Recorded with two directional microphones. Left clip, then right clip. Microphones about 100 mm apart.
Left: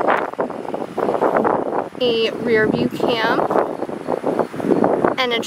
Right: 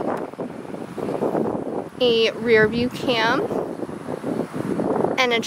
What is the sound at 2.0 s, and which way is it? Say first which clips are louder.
Speech: right 2 dB; 10° right (ahead or behind).